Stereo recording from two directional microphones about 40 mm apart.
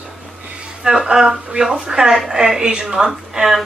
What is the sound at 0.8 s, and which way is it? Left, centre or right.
Speech, centre.